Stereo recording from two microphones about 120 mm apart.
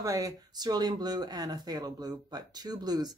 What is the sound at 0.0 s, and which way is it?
Speech, 30° right (ahead or behind).